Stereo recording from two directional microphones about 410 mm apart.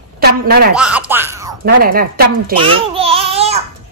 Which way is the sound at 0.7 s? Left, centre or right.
Centre.